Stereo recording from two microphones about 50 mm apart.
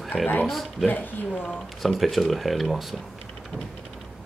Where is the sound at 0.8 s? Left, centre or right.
Left.